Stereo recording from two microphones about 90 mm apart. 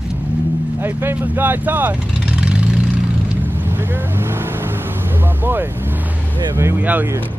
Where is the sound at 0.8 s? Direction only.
25° right (ahead or behind).